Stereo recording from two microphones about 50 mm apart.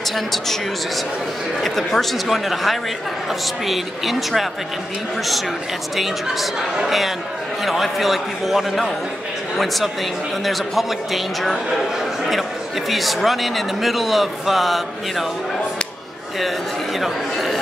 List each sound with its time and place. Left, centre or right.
0.1 s a man's voice: centre
1.6 s a man's voice: centre
5.9 s a man's voice: centre
10.4 s a man's voice: centre
12.9 s a man's voice: centre
17.0 s a man's voice: centre